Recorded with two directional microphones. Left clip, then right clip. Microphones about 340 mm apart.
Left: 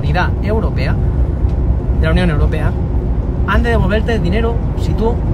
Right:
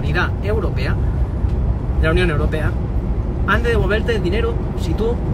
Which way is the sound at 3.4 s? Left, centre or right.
Centre.